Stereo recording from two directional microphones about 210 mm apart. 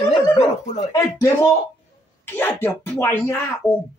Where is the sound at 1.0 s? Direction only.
15° left (ahead or behind).